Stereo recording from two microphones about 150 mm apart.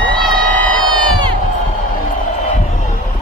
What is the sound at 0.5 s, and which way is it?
Crowd, 10° left (ahead or behind).